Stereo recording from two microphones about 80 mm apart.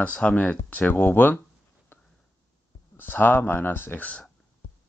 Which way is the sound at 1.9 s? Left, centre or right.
Left.